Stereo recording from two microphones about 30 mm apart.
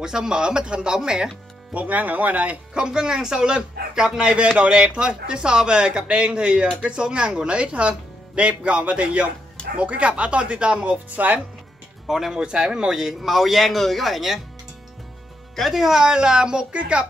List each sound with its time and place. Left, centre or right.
0.0 s speech: right
1.7 s speech: right
2.7 s speech: right
4.2 s speech: right
11.1 s speech: right
12.1 s speech: centre
12.4 s speech: right
12.9 s speech: centre
15.7 s speech: centre
16.0 s speech: right